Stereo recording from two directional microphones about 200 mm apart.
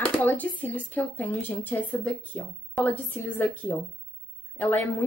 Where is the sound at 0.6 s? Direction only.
10° left (ahead or behind).